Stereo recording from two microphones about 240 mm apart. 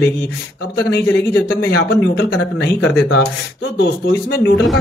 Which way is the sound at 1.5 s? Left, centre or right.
Left.